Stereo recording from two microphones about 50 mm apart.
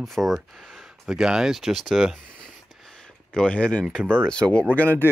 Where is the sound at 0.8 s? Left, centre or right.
Centre.